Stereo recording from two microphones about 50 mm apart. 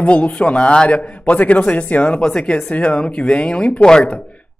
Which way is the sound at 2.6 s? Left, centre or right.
Left.